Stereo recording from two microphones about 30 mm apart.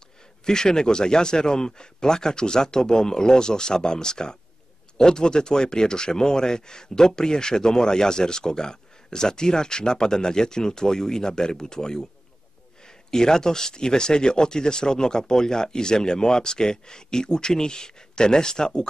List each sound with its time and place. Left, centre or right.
0.5 s speech: left